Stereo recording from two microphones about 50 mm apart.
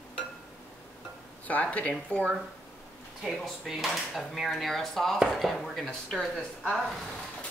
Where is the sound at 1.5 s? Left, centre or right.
Left.